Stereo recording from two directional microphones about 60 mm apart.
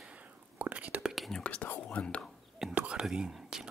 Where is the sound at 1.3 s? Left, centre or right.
Left.